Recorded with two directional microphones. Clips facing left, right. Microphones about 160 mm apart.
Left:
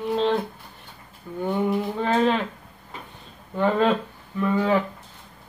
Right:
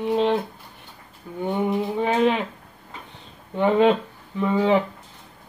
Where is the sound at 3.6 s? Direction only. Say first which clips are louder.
Right 3 dB; 20° right (ahead or behind).